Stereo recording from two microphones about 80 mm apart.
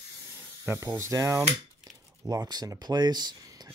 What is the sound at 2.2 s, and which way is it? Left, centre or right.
Speech, right.